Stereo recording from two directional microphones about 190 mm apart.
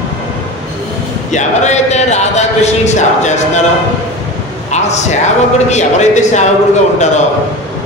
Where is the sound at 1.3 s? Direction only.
40° left (ahead or behind).